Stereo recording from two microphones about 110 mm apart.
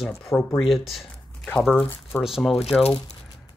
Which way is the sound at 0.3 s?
30° left (ahead or behind).